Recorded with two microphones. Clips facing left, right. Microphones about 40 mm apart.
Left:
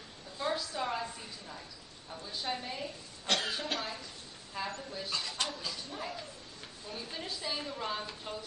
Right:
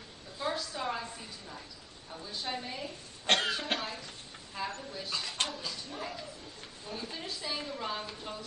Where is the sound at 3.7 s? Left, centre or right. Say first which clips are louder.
Right 1 dB; right.